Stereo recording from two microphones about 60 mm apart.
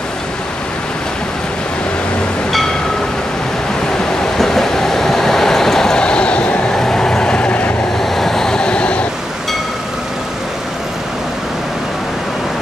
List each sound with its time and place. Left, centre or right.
4.4 s train: centre; by 7.7 s left
8.0 s vehicle: centre